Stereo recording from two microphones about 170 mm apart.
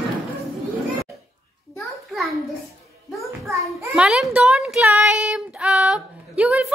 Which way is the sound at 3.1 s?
Centre (ahead or behind).